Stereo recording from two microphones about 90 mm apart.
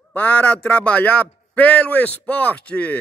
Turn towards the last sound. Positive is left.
turn(degrees=15)  # may be behind; listen again after turning